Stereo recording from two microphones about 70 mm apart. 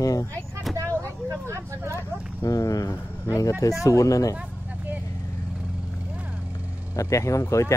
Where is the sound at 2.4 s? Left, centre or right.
Left.